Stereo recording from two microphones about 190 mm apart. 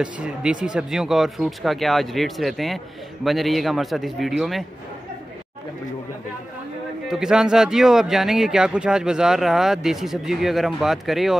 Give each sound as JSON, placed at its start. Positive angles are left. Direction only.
{"t": 0.0, "sound": "speech", "side_deg": -5}
{"t": 7.1, "sound": "speech", "side_deg": -5}